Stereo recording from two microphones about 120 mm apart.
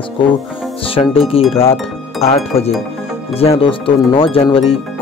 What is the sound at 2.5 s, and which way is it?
Speech, 55° left (ahead or behind).